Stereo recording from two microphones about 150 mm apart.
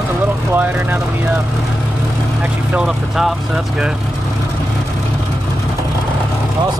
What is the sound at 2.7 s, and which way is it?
Speech, 5° right (ahead or behind).